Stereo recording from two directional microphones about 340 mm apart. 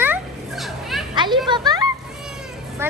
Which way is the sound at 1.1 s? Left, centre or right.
Centre.